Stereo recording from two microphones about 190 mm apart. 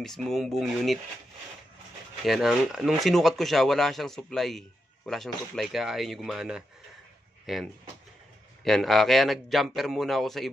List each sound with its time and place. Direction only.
0.0 s speech: centre (ahead or behind)
2.2 s speech: centre (ahead or behind)